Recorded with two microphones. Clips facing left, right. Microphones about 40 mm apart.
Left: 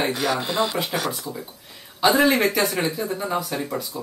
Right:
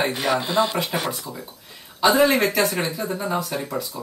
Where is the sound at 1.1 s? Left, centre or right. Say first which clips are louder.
Left 1 dB; centre.